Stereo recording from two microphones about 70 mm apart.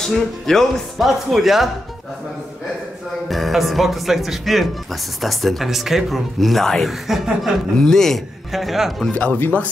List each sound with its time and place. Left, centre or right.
0.0 s speech: centre
3.3 s speech: centre
9.1 s speech: left